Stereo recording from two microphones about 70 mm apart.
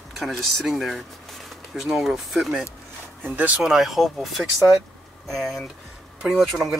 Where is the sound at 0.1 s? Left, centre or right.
Centre.